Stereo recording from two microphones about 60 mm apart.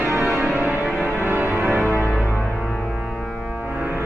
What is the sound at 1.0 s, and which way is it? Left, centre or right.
Organ, right.